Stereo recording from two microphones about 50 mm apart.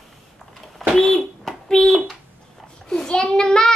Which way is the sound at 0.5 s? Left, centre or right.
Centre.